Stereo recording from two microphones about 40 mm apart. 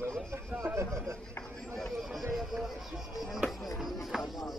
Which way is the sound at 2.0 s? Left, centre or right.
Centre.